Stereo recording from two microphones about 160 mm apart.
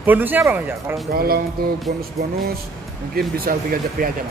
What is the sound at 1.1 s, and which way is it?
Music, 70° right (ahead or behind).